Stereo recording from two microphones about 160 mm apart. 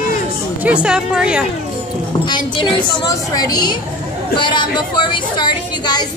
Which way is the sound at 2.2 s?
30° left (ahead or behind).